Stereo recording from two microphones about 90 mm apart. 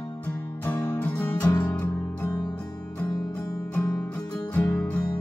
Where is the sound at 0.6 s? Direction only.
20° left (ahead or behind).